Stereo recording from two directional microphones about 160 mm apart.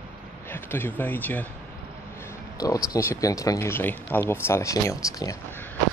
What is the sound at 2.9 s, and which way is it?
Speech, 20° left (ahead or behind).